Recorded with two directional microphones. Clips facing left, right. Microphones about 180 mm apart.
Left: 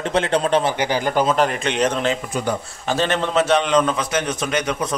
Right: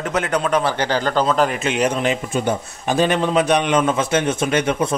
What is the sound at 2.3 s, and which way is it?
A man's voice, 20° right (ahead or behind).